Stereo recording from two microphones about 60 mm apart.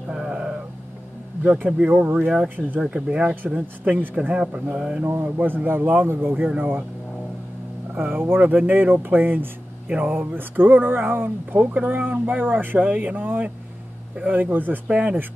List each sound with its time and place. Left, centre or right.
0.1 s sheep: centre
2.1 s speech: centre
2.4 s speech: right
2.8 s speech: centre
3.5 s speech: right; by 5.0 s centre
5.0 s speech: right
7.9 s speech: right
14.9 s speech: centre